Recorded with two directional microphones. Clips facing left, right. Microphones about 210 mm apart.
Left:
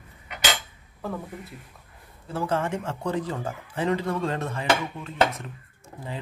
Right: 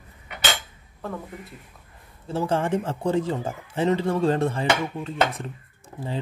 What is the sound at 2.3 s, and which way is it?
Speech, 30° right (ahead or behind).